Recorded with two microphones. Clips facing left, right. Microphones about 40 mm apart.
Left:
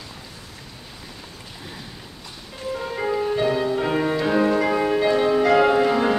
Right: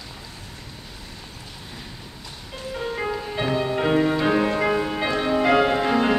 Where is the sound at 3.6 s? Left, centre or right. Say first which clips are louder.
Even; right.